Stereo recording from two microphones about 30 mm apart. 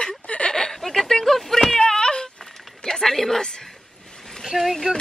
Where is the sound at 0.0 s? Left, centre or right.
Left.